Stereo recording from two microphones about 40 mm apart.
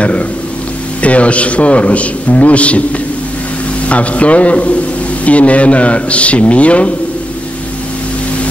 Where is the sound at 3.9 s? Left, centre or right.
Left.